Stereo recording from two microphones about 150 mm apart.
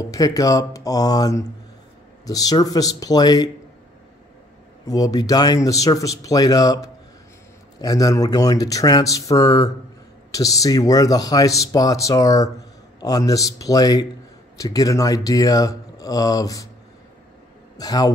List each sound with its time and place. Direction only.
0.0 s speech: 25° left (ahead or behind)
4.8 s speech: 25° left (ahead or behind)
17.7 s a man's voice: 25° left (ahead or behind)